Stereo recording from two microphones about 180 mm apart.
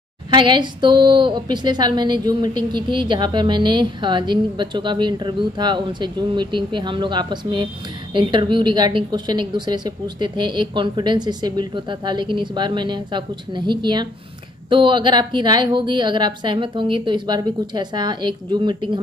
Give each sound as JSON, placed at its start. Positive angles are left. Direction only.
{"t": 0.3, "sound": "a woman's voice", "side_deg": -25}